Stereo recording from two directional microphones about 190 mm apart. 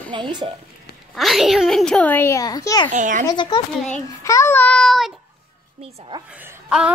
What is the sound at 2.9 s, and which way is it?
Speech, 40° right (ahead or behind).